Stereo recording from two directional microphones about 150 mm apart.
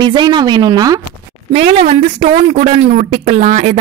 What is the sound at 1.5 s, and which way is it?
A woman's voice, 45° right (ahead or behind).